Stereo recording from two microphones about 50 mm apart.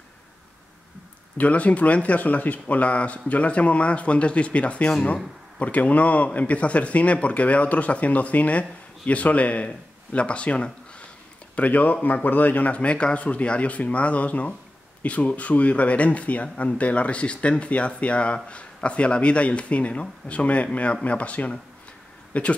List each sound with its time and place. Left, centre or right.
1.4 s speech: left